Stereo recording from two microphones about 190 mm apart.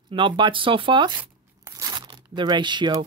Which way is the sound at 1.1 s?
15° right (ahead or behind).